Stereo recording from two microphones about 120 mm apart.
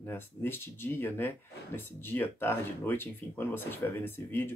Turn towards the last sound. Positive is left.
turn(degrees=15)  # may be behind; listen again after turning